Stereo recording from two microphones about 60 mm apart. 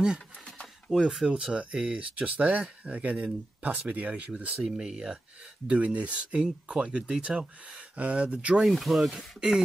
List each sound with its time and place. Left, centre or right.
0.8 s speech: centre; by 4.6 s right
4.6 s speech: centre
8.6 s speech: centre